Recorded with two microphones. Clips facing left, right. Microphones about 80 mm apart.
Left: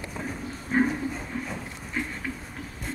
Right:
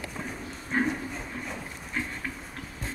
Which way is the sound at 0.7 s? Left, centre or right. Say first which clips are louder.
Left 4 dB; centre.